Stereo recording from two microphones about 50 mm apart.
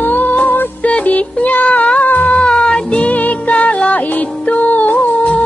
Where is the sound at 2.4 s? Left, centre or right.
Centre.